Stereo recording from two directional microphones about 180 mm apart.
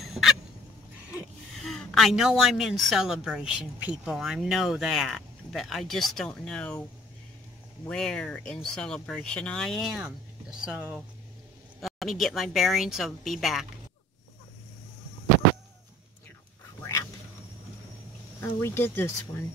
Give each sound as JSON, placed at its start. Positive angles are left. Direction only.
{"t": 0.0, "sound": "fowl", "side_deg": 0}
{"t": 1.1, "sound": "a woman's voice", "side_deg": 0}
{"t": 7.9, "sound": "a woman's voice", "side_deg": 5}
{"t": 11.8, "sound": "a woman's voice", "side_deg": 0}
{"t": 18.4, "sound": "speech", "side_deg": 15}